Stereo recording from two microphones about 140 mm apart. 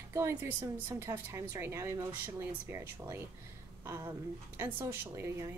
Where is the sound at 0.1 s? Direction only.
15° right (ahead or behind).